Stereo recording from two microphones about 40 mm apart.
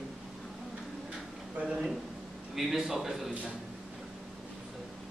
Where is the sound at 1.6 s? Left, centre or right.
Right.